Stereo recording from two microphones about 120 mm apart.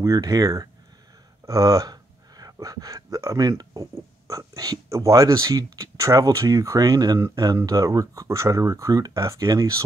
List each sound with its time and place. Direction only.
0.0 s speech: 30° right (ahead or behind)